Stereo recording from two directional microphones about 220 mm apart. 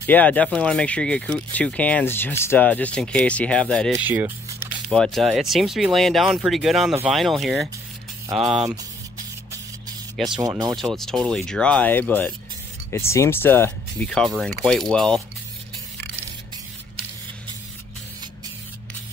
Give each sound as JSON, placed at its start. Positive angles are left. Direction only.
{"t": 0.0, "sound": "speech", "side_deg": 5}
{"t": 3.9, "sound": "rub", "side_deg": -10}
{"t": 4.8, "sound": "speech", "side_deg": 0}
{"t": 10.4, "sound": "rub", "side_deg": -15}
{"t": 10.8, "sound": "speech", "side_deg": 0}